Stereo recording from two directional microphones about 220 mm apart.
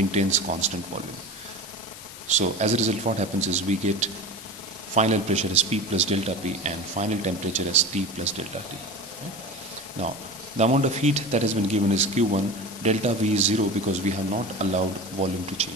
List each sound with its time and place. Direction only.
0.1 s a man's voice: 30° right (ahead or behind)
2.2 s a man's voice: 30° right (ahead or behind)
10.6 s a man's voice: 30° right (ahead or behind)